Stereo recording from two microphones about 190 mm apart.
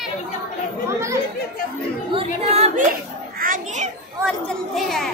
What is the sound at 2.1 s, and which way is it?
A child's voice, 35° right (ahead or behind).